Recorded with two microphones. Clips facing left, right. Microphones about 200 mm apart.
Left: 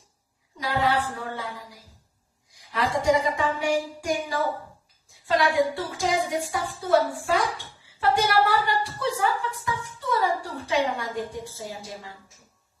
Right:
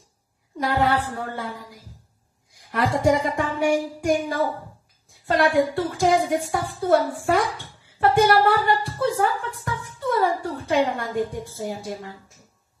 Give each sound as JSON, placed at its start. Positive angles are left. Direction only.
{"t": 0.6, "sound": "a woman's voice", "side_deg": -55}
{"t": 2.6, "sound": "a sound", "side_deg": -55}
{"t": 3.0, "sound": "a woman's voice", "side_deg": -55}